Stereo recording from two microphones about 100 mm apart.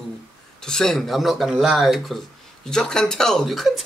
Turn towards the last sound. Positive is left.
turn(degrees=0)  # may be behind; listen again after turning